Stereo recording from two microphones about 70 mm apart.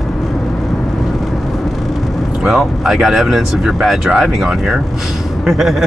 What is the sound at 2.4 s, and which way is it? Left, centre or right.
Speech, centre.